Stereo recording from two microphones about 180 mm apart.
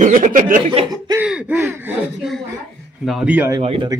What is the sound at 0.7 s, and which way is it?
Speech, 25° right (ahead or behind).